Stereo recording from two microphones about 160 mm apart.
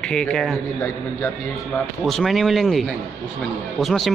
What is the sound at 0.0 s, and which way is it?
Speech, 5° left (ahead or behind).